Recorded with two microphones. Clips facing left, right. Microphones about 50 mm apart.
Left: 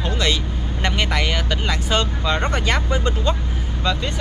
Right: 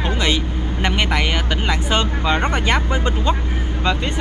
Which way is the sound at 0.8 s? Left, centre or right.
Centre.